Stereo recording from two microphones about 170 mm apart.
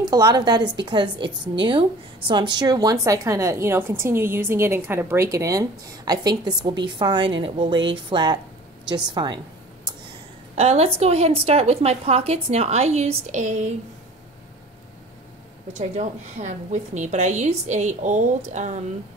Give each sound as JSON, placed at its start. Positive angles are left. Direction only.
{"t": 0.0, "sound": "speech", "side_deg": -25}
{"t": 10.5, "sound": "a woman's voice", "side_deg": -40}
{"t": 15.7, "sound": "a woman's voice", "side_deg": -45}